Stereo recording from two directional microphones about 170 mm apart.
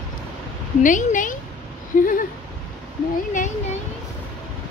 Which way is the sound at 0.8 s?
50° left (ahead or behind).